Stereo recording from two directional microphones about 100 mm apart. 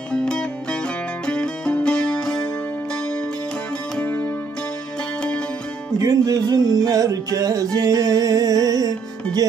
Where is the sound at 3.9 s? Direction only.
15° left (ahead or behind).